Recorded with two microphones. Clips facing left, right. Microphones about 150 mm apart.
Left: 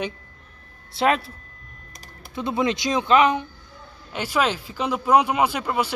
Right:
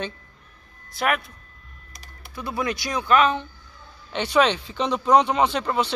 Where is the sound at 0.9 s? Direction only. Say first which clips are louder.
Left 4 dB; 25° left (ahead or behind).